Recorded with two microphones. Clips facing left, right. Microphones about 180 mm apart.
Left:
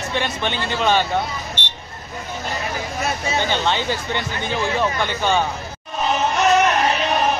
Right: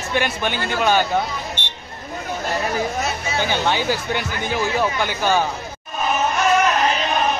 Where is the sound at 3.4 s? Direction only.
10° right (ahead or behind).